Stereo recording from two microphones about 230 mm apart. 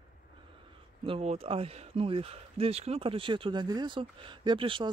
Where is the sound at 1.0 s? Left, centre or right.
Right.